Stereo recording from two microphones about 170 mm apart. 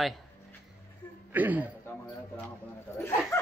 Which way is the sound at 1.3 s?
10° right (ahead or behind).